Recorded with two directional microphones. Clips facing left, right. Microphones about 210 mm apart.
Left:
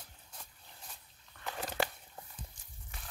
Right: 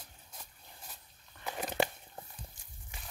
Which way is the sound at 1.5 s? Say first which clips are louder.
Right 3 dB; 20° right (ahead or behind).